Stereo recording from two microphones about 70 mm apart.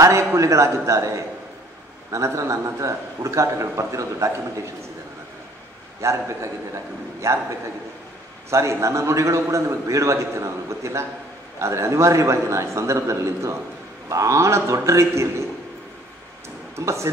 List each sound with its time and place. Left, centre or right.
0.0 s a man's voice: right
5.9 s a man's voice: right
8.5 s a man's voice: right
16.7 s a man's voice: right